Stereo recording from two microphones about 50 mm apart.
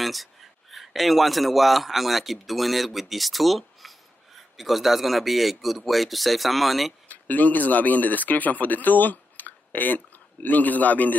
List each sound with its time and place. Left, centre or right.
0.0 s a man's voice: centre
7.1 s speech: left